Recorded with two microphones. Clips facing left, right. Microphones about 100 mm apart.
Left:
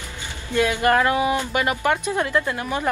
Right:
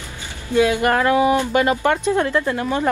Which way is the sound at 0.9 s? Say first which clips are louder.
Right 3 dB; 30° right (ahead or behind).